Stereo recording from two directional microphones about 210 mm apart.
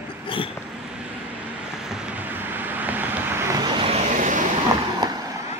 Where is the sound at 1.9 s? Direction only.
5° right (ahead or behind); by 4.4 s 35° right (ahead or behind).